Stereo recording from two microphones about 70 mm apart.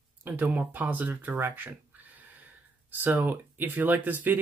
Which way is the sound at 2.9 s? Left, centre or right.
Right.